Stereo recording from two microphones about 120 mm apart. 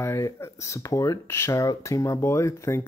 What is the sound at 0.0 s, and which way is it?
Speech, 20° left (ahead or behind).